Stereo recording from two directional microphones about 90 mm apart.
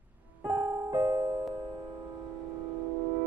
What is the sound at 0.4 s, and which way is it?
Music, 50° right (ahead or behind).